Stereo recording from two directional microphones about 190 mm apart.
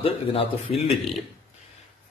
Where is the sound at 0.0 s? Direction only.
30° left (ahead or behind).